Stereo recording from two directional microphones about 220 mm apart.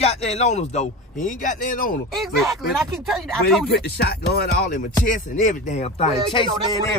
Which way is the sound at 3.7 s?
45° left (ahead or behind).